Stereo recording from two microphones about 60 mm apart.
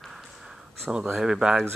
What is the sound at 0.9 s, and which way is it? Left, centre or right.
Speech, centre.